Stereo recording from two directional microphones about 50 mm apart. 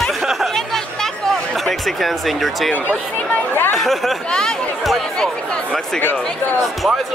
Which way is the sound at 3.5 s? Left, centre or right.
Left.